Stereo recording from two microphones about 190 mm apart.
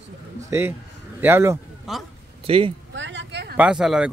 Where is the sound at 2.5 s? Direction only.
30° right (ahead or behind).